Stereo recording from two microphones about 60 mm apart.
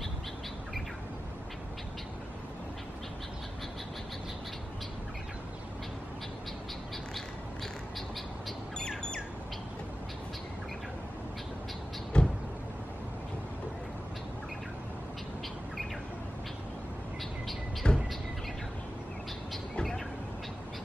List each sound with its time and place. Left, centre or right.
8.7 s squawk: centre
12.1 s vehicle: centre
17.8 s bird: centre